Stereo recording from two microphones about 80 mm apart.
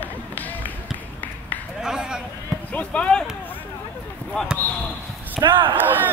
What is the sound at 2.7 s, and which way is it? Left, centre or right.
Basketball bounce, centre.